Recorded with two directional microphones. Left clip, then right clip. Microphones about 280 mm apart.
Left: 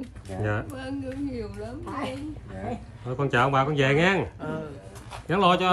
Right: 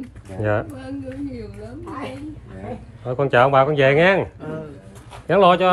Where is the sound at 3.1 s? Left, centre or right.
Centre.